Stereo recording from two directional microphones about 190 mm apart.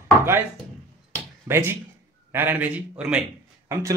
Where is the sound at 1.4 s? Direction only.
10° right (ahead or behind).